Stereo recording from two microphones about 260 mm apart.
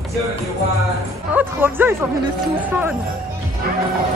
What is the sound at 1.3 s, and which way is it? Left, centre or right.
Speech, centre.